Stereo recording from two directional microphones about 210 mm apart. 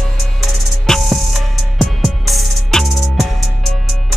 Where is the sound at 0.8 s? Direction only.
Centre (ahead or behind).